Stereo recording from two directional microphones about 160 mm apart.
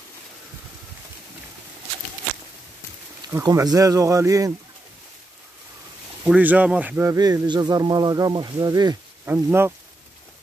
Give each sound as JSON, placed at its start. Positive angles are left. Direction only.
{"t": 3.3, "sound": "a man's voice", "side_deg": -15}
{"t": 6.2, "sound": "a man's voice", "side_deg": -10}
{"t": 9.2, "sound": "speech", "side_deg": -15}